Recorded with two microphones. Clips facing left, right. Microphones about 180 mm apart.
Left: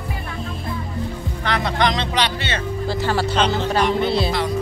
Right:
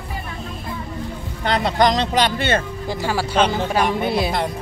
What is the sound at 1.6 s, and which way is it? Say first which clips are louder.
Speech: right 4 dB; 40° right (ahead or behind).